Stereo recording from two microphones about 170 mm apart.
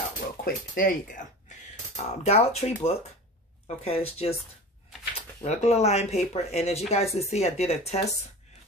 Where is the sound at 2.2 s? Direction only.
40° left (ahead or behind).